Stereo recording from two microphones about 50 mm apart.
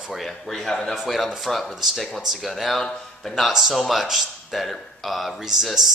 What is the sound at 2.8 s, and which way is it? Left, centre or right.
Speech, centre.